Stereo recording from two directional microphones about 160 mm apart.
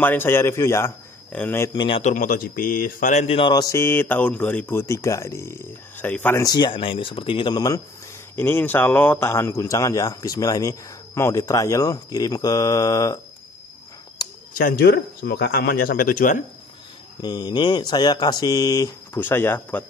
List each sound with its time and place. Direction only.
0.0 s speech: 15° left (ahead or behind)
1.7 s speech: 30° left (ahead or behind)
2.0 s speech: 50° left (ahead or behind); by 6.4 s 10° left (ahead or behind)
6.4 s speech: 25° left (ahead or behind)
8.4 s speech: 15° left (ahead or behind)
14.5 s speech: 65° left (ahead or behind)
17.2 s speech: 25° left (ahead or behind)